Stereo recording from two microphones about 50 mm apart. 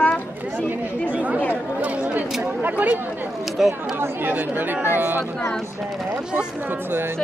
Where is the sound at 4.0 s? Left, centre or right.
Right.